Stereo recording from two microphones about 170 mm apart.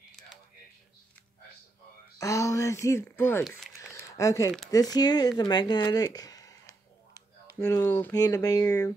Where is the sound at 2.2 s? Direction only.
20° left (ahead or behind).